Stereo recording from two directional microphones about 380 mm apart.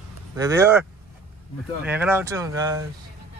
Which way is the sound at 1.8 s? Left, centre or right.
Centre.